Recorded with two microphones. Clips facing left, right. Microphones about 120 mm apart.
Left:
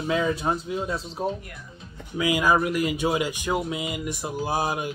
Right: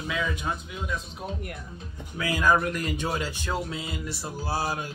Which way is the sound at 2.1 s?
15° left (ahead or behind).